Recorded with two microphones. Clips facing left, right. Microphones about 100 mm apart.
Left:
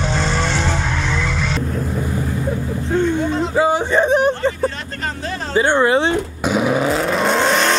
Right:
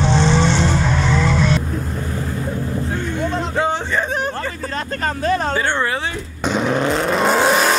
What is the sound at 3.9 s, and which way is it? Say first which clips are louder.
Speech: left 7 dB; 20° left (ahead or behind).